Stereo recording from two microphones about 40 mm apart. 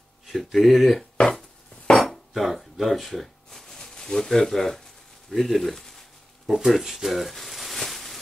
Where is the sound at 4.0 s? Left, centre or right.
Centre.